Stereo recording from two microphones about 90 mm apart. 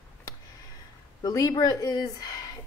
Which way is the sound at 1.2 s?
45° left (ahead or behind).